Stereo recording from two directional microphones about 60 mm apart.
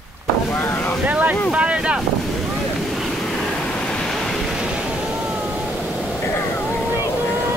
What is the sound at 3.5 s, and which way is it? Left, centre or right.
Vehicle, centre.